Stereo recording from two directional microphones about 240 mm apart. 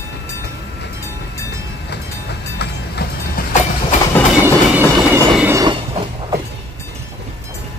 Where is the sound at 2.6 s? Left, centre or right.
Left.